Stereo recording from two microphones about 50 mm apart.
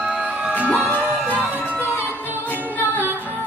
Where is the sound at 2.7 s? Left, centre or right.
Left.